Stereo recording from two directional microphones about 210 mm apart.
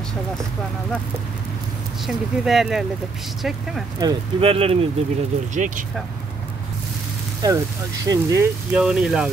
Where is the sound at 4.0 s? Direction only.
20° right (ahead or behind); by 5.8 s 40° right (ahead or behind).